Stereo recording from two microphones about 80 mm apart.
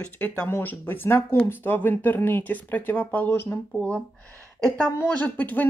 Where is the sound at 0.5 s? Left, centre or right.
Left.